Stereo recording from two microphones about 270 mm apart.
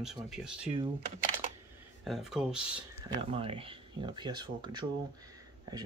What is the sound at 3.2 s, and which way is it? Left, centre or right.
Speech, centre.